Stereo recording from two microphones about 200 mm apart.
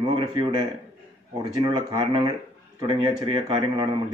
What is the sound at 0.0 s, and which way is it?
A man's voice, 25° right (ahead or behind).